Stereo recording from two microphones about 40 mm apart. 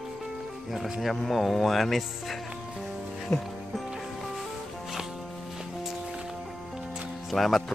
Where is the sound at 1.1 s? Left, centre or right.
Centre.